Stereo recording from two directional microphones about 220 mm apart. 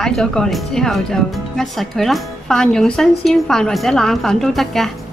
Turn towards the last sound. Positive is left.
turn(degrees=0)  # may be behind; listen again after turning